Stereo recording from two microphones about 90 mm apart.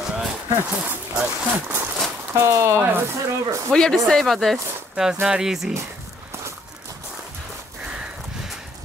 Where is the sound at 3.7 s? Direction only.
5° left (ahead or behind).